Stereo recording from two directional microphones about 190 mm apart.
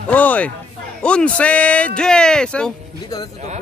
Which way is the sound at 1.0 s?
5° left (ahead or behind).